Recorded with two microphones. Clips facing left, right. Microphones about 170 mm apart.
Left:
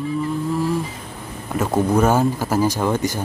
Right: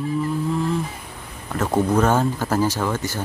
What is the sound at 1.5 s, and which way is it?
Speech, 10° left (ahead or behind).